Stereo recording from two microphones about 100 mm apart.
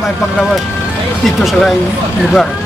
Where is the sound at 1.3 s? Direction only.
Centre (ahead or behind).